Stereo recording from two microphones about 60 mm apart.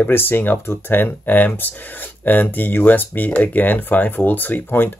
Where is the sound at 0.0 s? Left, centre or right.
Left.